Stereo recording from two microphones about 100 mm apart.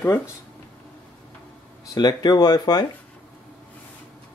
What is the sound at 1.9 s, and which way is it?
Speech, 40° left (ahead or behind).